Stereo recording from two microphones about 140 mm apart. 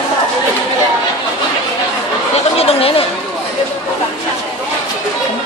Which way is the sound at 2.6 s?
45° left (ahead or behind).